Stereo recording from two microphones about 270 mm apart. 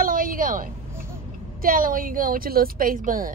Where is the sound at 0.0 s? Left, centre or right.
Right.